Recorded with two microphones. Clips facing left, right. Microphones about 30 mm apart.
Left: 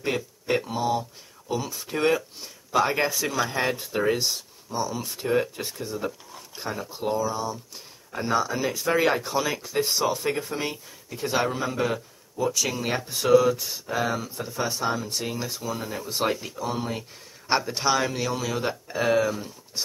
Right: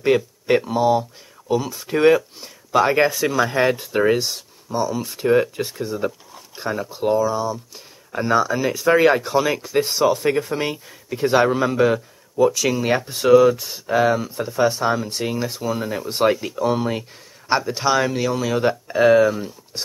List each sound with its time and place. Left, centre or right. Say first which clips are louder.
0.0 s speech: right 10 dB; right
5.0 s speech: right 8 dB; right
16.5 s speech: right 9 dB; right
17.5 s speech: right 4 dB; centre